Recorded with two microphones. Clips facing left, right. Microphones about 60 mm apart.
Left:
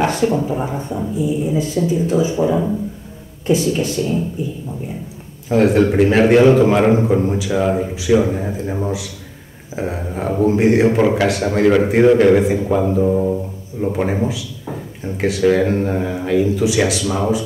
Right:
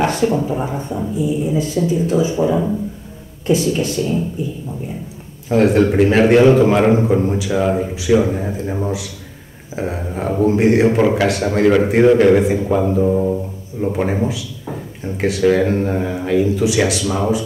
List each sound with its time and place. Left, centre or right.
0.0 s speech: centre
5.5 s speech: centre